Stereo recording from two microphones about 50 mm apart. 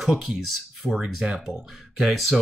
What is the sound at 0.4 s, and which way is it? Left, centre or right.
Speech, centre.